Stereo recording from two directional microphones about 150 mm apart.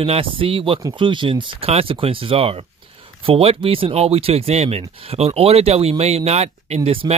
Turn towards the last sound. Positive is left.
turn(degrees=-40)  # may be behind; listen again after turning